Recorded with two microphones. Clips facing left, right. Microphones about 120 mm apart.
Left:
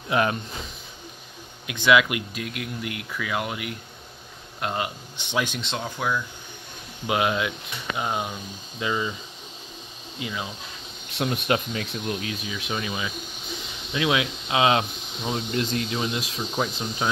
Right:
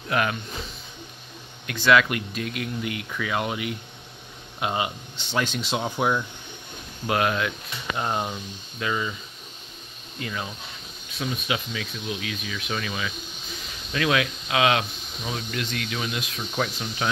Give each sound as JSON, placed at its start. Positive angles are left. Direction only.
{"t": 0.1, "sound": "speech", "side_deg": 30}
{"t": 1.7, "sound": "speech", "side_deg": 10}
{"t": 5.1, "sound": "speech", "side_deg": 15}
{"t": 5.6, "sound": "speech", "side_deg": -10}
{"t": 7.1, "sound": "speech", "side_deg": 15}
{"t": 8.0, "sound": "speech", "side_deg": 5}
{"t": 8.7, "sound": "speech", "side_deg": 20}
{"t": 10.1, "sound": "speech", "side_deg": 10}
{"t": 11.1, "sound": "speech", "side_deg": 70}
{"t": 11.4, "sound": "speech", "side_deg": 45}
{"t": 12.4, "sound": "speech", "side_deg": 20}